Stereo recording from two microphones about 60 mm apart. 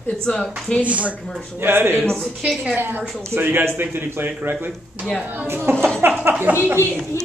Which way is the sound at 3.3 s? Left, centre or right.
Right.